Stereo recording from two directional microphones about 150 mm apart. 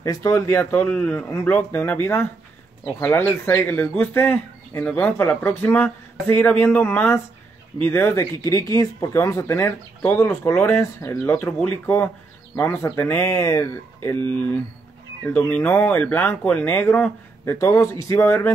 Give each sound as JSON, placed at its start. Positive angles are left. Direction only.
{"t": 0.0, "sound": "speech", "side_deg": 20}